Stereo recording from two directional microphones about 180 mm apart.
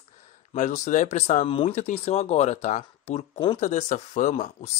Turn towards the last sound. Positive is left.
turn(degrees=40)  # may be behind; listen again after turning